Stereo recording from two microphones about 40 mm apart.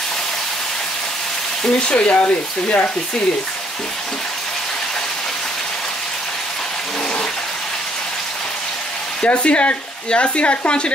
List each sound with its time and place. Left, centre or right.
2.0 s speech: left
9.2 s speech: left